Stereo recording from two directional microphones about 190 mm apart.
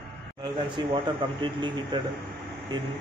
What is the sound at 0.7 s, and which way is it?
Speech, 25° right (ahead or behind).